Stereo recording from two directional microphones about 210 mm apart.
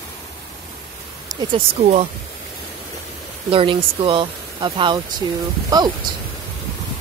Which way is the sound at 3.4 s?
25° right (ahead or behind).